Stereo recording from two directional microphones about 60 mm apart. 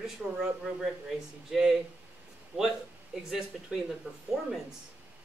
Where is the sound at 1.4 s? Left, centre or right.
Centre.